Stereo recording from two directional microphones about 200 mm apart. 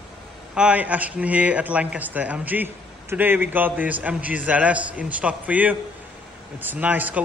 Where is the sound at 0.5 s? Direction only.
5° right (ahead or behind).